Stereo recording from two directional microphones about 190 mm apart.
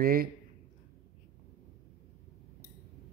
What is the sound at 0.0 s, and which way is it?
Speech, 50° right (ahead or behind).